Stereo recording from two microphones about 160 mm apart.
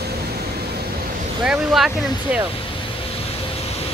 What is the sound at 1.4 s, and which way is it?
Speech, 5° right (ahead or behind).